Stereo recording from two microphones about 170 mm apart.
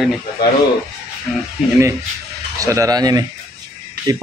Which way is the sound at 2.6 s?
20° right (ahead or behind).